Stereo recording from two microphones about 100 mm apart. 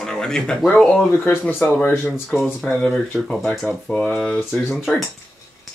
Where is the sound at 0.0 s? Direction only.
5° left (ahead or behind).